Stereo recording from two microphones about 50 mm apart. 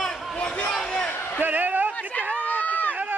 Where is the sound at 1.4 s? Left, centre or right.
Right.